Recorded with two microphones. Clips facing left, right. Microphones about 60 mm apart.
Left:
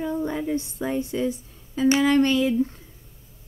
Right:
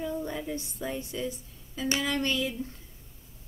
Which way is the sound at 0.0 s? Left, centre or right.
Left.